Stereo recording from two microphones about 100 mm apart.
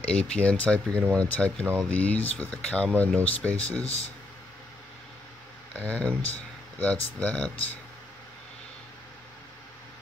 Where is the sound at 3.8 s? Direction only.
90° left.